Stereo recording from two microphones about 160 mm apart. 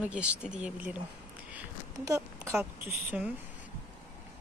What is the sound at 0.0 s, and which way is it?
Speech, 5° right (ahead or behind).